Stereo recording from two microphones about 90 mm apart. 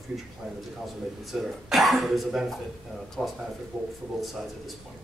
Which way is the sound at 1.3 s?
5° right (ahead or behind).